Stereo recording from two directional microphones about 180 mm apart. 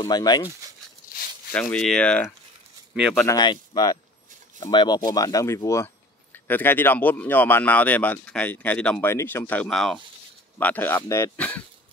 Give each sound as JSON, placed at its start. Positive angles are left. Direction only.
{"t": 0.0, "sound": "speech", "side_deg": 20}
{"t": 1.5, "sound": "speech", "side_deg": 5}
{"t": 3.3, "sound": "speech", "side_deg": 20}